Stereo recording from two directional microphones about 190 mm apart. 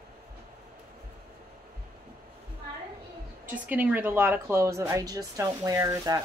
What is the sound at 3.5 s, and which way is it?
A woman's voice, 10° right (ahead or behind).